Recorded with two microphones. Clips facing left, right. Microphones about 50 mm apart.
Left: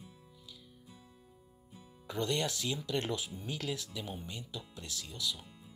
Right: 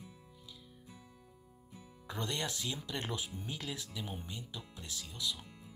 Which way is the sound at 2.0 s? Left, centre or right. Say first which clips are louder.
Left 5 dB; centre.